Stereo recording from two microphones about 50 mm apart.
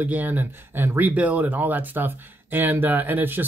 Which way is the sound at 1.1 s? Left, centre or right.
Right.